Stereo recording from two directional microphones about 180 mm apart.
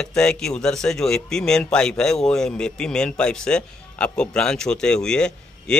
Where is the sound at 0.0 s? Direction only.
5° left (ahead or behind).